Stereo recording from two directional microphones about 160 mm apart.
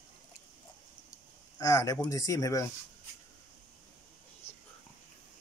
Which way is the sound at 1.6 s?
20° left (ahead or behind).